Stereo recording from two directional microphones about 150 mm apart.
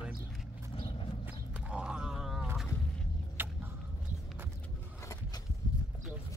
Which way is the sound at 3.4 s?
15° right (ahead or behind).